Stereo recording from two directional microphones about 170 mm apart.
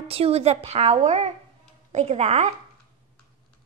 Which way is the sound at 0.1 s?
35° right (ahead or behind).